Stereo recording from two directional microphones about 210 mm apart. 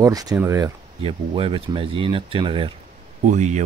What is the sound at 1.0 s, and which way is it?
Speech, 25° right (ahead or behind).